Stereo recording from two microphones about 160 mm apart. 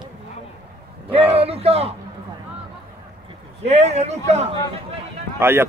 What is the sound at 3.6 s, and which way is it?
Speech, 45° right (ahead or behind).